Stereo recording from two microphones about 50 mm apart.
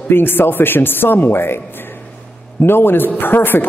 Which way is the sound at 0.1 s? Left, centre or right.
Left.